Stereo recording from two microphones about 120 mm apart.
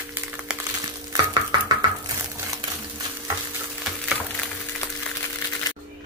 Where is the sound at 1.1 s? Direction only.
30° right (ahead or behind).